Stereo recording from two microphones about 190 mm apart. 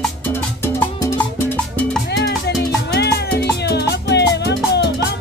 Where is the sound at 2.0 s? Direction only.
60° left (ahead or behind).